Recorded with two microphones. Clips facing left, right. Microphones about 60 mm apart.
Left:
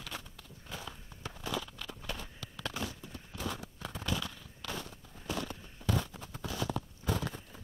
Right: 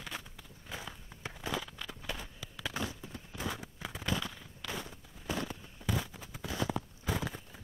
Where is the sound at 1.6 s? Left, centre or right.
Centre.